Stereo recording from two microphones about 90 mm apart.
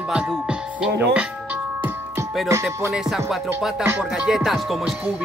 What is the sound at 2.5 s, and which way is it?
Music, 30° right (ahead or behind).